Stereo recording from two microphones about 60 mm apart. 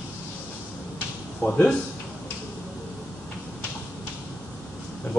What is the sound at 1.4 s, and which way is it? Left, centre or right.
Speech, left.